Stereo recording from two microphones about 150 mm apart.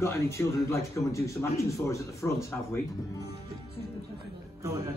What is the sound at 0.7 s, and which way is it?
Speech, 20° left (ahead or behind).